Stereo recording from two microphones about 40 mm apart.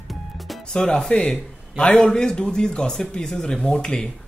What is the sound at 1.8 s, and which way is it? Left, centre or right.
Speech, left.